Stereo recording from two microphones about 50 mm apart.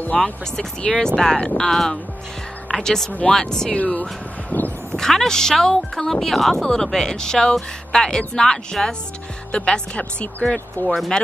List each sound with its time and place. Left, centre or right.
0.2 s speech: centre
3.7 s speech: left
4.9 s speech: centre
9.5 s speech: left
10.8 s speech: left